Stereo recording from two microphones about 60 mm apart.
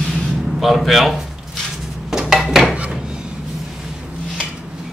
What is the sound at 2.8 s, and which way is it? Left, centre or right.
Wood, centre.